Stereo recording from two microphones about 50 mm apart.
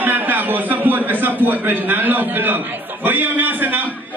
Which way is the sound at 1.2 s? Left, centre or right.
Right.